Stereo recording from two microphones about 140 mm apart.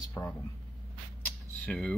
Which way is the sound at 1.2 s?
10° left (ahead or behind).